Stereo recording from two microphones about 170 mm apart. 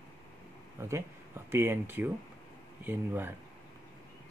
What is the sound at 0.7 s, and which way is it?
Speech, 15° right (ahead or behind).